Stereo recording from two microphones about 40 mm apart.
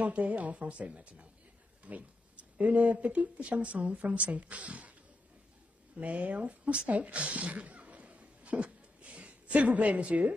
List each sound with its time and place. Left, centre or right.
0.0 s speech: right
5.9 s speech: right
7.0 s a sound: right